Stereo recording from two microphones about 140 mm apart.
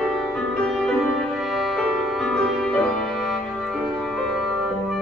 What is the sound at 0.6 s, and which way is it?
Music, 5° left (ahead or behind).